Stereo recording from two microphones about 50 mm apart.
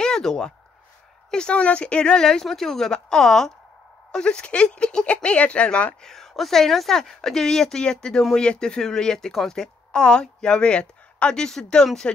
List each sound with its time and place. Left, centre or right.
0.0 s a sound: centre
1.3 s speech: centre
4.1 s speech: centre
6.0 s speech: centre